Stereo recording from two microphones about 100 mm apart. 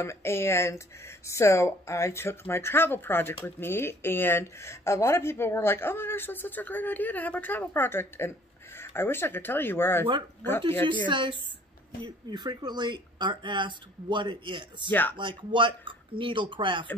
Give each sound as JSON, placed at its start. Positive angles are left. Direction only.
{"t": 0.0, "sound": "speech", "side_deg": 25}
{"t": 11.1, "sound": "speech", "side_deg": -55}
{"t": 14.9, "sound": "speech", "side_deg": 20}
{"t": 15.1, "sound": "speech", "side_deg": -55}